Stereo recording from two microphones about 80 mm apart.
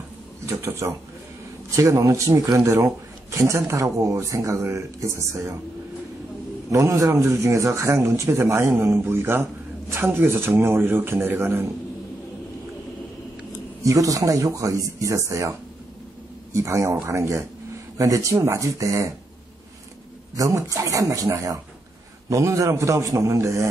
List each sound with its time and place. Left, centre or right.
0.5 s speech: right
6.7 s speech: right
13.8 s speech: right
16.5 s speech: right
20.3 s speech: right